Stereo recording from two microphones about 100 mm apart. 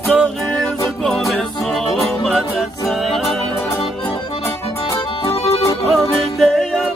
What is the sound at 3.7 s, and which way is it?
Accordion, 30° left (ahead or behind).